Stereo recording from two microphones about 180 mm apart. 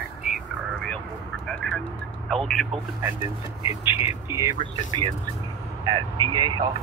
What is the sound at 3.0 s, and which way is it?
Speech, 15° right (ahead or behind).